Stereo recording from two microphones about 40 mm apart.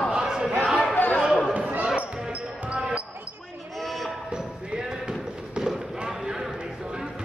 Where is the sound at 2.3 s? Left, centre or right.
Right.